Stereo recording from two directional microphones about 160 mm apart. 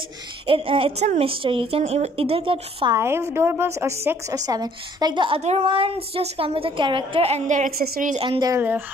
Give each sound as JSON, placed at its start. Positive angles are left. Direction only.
{"t": 0.5, "sound": "speech", "side_deg": -35}
{"t": 3.0, "sound": "a woman's voice", "side_deg": -15}
{"t": 5.4, "sound": "speech", "side_deg": -40}
{"t": 7.8, "sound": "a woman's voice", "side_deg": -70}
{"t": 8.3, "sound": "speech", "side_deg": -25}
{"t": 8.5, "sound": "a woman's voice", "side_deg": -15}